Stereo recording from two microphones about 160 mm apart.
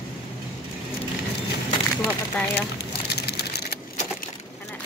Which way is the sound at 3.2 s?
90° left.